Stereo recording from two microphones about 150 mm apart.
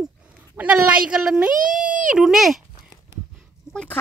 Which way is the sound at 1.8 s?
60° right (ahead or behind).